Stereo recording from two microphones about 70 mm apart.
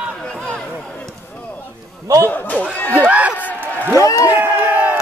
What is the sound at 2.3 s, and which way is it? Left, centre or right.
Speech, left.